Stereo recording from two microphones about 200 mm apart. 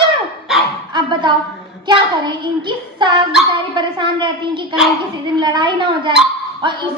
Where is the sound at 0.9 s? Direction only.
25° right (ahead or behind).